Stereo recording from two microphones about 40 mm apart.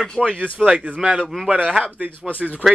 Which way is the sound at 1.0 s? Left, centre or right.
Centre.